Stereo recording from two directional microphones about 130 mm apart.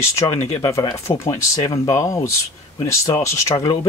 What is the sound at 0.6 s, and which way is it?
Speech, 25° left (ahead or behind).